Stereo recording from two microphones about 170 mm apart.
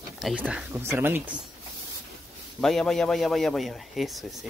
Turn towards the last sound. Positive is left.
turn(degrees=0)  # may be behind; listen again after turning